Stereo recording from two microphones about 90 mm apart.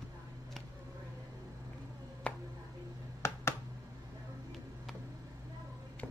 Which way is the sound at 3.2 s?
30° left (ahead or behind).